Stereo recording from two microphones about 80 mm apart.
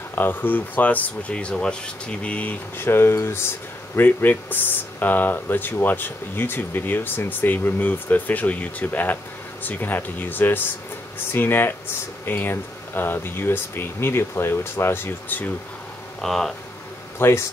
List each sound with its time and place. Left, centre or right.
0.1 s speech: left
2.8 s speech: left
16.2 s speech: centre
17.2 s speech: left